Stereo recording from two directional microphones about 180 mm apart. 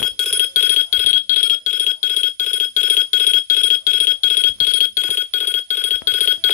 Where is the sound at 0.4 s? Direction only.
45° left (ahead or behind).